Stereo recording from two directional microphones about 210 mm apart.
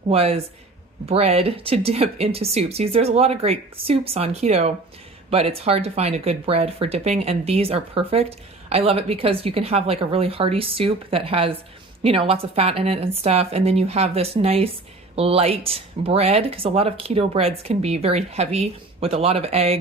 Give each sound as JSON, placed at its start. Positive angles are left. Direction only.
{"t": 0.1, "sound": "speech", "side_deg": -30}